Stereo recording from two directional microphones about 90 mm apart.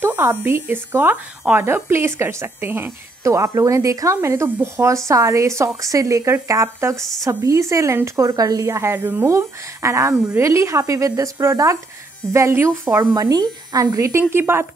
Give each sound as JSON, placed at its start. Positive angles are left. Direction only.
{"t": 0.0, "sound": "a woman's voice", "side_deg": -25}
{"t": 3.3, "sound": "a woman's voice", "side_deg": -35}
{"t": 13.2, "sound": "a woman's voice", "side_deg": -45}
{"t": 14.3, "sound": "a woman's voice", "side_deg": -25}